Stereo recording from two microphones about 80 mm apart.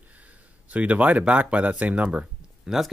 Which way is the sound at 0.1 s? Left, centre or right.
Centre.